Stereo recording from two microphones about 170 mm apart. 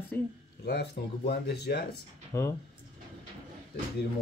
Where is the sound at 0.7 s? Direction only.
80° left.